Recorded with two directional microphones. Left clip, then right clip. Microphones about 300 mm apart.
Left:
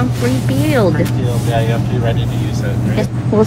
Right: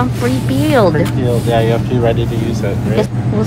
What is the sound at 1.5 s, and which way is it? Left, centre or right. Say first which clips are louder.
Speech: right 3 dB; right.